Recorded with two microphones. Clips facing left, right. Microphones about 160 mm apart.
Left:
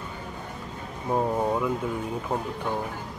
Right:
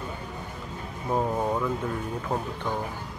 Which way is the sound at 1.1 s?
5° left (ahead or behind).